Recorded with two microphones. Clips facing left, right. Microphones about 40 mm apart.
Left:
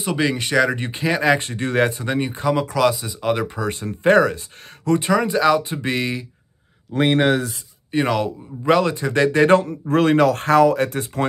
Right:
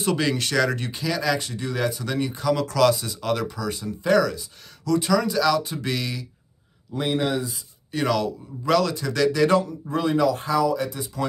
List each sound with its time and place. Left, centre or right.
0.0 s speech: centre
3.4 s speech: left
6.9 s speech: left
7.9 s speech: left
9.8 s speech: left